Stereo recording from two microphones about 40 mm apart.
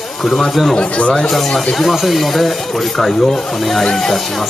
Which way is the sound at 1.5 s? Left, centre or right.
Centre.